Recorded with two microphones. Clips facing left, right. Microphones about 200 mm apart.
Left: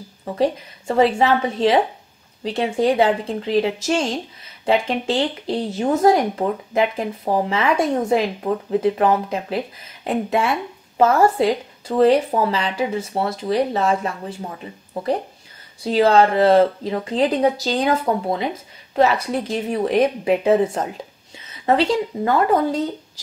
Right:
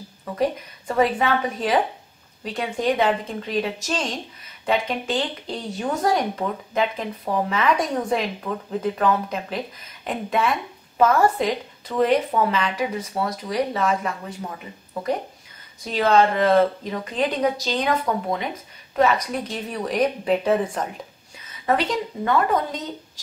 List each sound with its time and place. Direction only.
0.2 s speech: 25° left (ahead or behind)
15.8 s speech: 30° left (ahead or behind)